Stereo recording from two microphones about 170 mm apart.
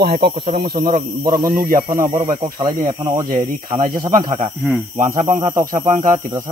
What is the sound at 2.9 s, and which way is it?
Speech, 20° right (ahead or behind).